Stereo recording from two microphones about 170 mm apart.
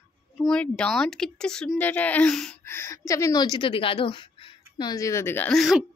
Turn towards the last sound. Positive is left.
turn(degrees=0)  # may be behind; listen again after turning